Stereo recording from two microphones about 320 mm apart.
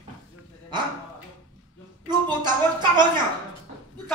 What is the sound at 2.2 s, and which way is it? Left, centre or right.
Speech, centre.